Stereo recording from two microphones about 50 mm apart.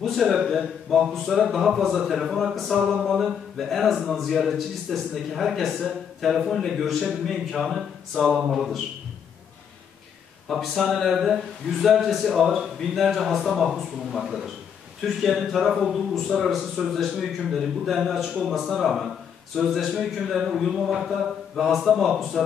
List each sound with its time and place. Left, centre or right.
0.0 s a man's voice: centre
10.7 s a man's voice: centre